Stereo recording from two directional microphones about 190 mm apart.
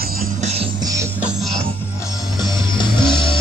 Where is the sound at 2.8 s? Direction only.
25° left (ahead or behind).